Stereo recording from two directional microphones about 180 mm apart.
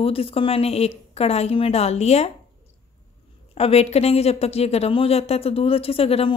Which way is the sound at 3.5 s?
35° left (ahead or behind).